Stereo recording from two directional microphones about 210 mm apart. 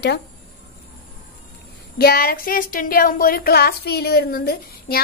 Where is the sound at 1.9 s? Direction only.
45° left (ahead or behind).